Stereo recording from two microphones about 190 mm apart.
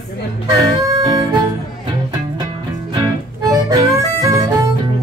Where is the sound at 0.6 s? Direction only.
20° right (ahead or behind).